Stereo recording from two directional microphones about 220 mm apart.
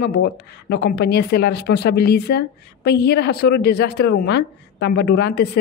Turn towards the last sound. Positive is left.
turn(degrees=50)  # may be behind; listen again after turning